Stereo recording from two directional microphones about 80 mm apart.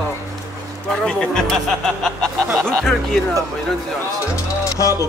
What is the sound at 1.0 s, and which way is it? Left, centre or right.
Speech, centre.